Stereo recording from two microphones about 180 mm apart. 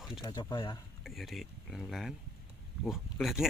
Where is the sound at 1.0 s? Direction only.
Centre (ahead or behind).